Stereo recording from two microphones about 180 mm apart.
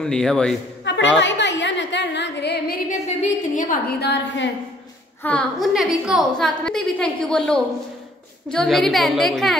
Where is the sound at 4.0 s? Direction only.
65° left (ahead or behind).